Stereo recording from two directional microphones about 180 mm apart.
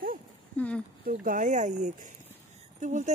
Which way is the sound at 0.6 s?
5° left (ahead or behind).